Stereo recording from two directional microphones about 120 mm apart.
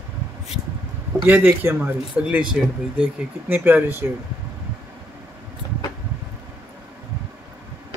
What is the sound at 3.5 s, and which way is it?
Speech, 15° right (ahead or behind).